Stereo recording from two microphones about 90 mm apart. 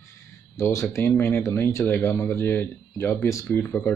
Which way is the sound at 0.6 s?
30° left (ahead or behind).